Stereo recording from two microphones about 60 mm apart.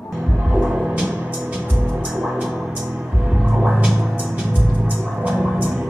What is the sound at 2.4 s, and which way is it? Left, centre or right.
Music, centre.